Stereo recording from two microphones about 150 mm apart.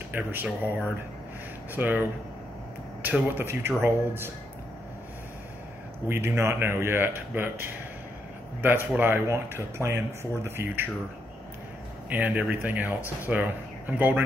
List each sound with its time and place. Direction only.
0.1 s speech: 15° right (ahead or behind)
1.8 s speech: 10° right (ahead or behind)
6.0 s speech: 15° right (ahead or behind)
12.1 s speech: 10° right (ahead or behind)